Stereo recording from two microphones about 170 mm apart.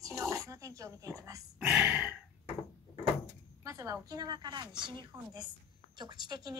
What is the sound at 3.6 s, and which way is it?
Speech, 20° right (ahead or behind).